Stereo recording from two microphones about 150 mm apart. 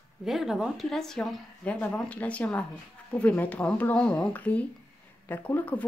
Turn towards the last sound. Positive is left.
turn(degrees=10)  # may be behind; listen again after turning